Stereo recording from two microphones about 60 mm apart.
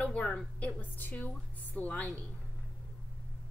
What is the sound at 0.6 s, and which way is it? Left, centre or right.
A woman's voice, left.